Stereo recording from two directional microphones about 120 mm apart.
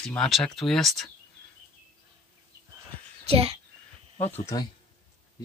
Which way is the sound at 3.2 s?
55° right (ahead or behind).